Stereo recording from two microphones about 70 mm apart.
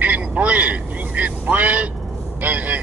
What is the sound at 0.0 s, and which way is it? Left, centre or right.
Vehicle, right.